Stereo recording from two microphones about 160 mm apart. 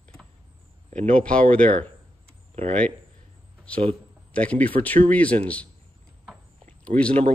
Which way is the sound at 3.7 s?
5° left (ahead or behind).